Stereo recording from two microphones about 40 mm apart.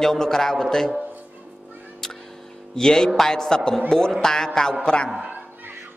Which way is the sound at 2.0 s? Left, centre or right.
Centre.